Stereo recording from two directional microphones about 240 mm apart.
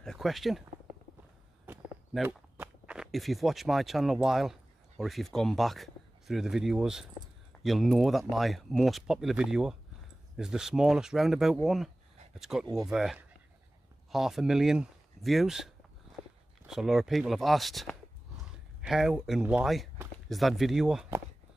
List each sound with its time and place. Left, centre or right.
0.0 s speech: centre
1.7 s speech: centre